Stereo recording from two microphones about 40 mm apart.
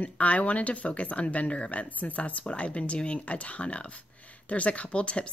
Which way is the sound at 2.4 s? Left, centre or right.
Left.